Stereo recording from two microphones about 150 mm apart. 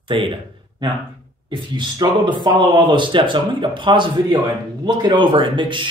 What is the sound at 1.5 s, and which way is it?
Speech, 30° right (ahead or behind).